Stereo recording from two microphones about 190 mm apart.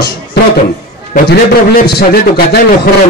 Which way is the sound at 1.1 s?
50° left (ahead or behind).